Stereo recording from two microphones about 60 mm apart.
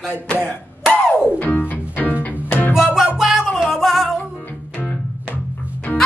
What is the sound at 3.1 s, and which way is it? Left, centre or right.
Music, centre.